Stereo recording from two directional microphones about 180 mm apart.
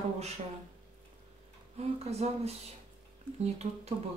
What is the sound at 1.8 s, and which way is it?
Speech, 35° right (ahead or behind).